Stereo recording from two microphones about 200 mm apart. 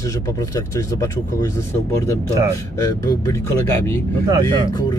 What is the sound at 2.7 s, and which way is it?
Speech, 15° left (ahead or behind).